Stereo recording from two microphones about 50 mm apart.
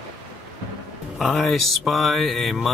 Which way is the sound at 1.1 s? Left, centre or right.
Centre.